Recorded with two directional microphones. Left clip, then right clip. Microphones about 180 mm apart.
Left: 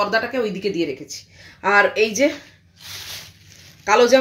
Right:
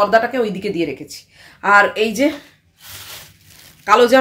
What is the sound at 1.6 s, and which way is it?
Speech, 10° right (ahead or behind).